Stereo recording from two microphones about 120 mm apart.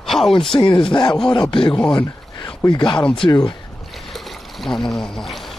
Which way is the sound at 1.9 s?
40° left (ahead or behind).